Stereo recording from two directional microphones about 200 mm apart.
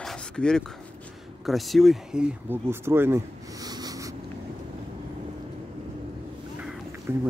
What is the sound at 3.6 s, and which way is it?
Writing, 20° right (ahead or behind).